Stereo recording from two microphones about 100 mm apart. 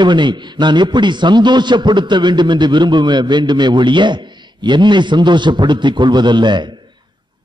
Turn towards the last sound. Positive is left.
turn(degrees=-50)  # may be behind; listen again after turning